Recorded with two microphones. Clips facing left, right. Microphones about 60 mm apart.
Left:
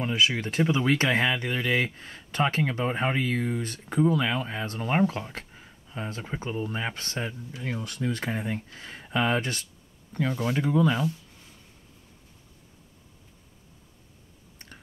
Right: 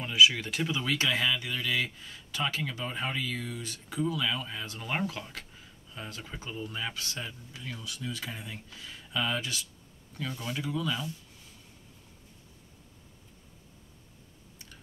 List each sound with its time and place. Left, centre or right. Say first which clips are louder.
0.0 s speech: right 1 dB; left
7.8 s speech: left 7 dB; left